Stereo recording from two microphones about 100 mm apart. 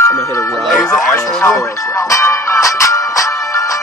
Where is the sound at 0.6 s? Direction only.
Centre (ahead or behind).